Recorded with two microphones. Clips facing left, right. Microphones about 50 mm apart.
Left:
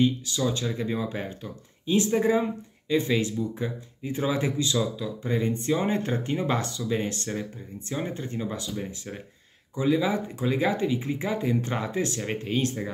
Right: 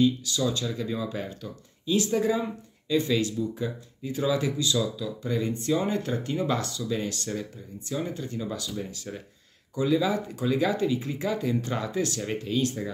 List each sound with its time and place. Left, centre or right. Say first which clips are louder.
0.0 s speech: even; left